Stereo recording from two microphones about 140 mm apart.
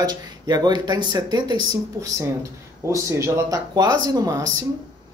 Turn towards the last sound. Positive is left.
turn(degrees=-25)  # may be behind; listen again after turning